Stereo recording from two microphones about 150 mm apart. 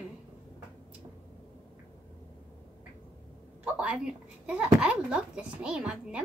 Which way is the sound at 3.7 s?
10° right (ahead or behind).